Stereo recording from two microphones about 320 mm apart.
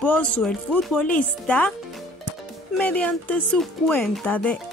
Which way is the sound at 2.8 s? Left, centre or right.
Centre.